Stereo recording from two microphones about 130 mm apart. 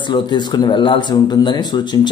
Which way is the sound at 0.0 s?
35° left (ahead or behind).